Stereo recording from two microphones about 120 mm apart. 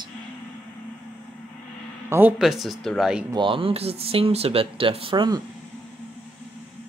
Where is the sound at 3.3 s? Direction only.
45° right (ahead or behind).